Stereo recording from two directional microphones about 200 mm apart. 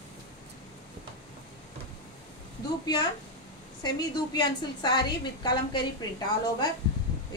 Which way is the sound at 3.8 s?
20° left (ahead or behind).